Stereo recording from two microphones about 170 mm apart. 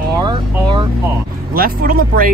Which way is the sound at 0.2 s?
25° right (ahead or behind).